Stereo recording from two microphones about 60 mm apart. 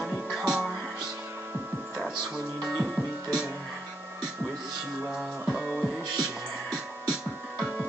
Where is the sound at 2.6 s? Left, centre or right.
Centre.